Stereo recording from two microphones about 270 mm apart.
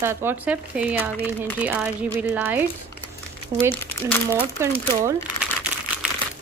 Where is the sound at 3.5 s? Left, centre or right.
Right.